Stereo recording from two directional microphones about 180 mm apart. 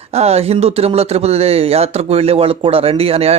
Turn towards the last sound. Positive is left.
turn(degrees=-35)  # may be behind; listen again after turning